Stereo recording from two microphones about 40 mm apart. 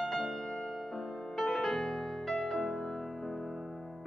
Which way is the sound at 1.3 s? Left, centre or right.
Centre.